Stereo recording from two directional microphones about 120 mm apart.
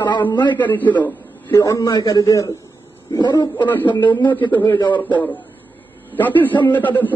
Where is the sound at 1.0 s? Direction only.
15° left (ahead or behind).